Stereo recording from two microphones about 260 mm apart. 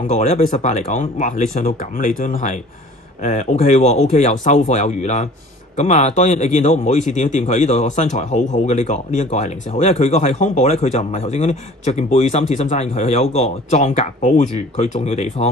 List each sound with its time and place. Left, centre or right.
0.0 s a man's voice: left